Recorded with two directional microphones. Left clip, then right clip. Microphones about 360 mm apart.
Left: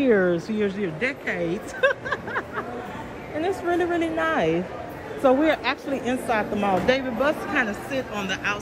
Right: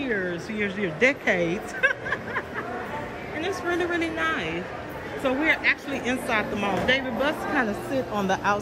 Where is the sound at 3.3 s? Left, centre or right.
Centre.